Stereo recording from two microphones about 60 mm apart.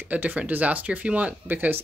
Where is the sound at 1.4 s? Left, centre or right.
Right.